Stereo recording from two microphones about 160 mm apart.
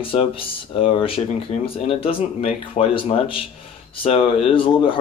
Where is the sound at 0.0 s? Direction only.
35° left (ahead or behind).